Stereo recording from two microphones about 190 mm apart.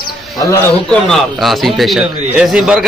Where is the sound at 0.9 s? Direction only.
5° left (ahead or behind).